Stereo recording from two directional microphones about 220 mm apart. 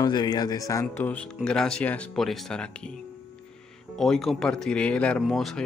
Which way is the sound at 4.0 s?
Centre (ahead or behind).